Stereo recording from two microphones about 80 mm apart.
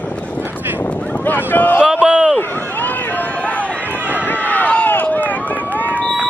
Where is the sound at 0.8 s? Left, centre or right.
Centre.